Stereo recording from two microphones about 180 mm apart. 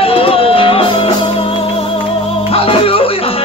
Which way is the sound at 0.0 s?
30° left (ahead or behind).